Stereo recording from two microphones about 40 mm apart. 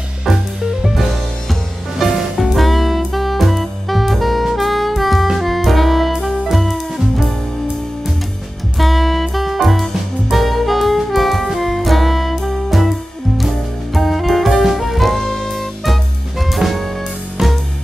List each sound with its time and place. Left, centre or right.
1.5 s music: centre
8.7 s music: centre
10.3 s saxophone: centre
13.9 s saxophone: centre
17.4 s music: centre